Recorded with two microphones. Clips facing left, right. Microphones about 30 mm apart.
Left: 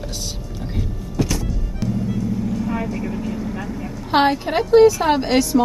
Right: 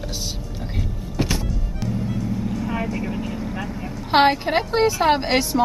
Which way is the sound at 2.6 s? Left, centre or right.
Centre.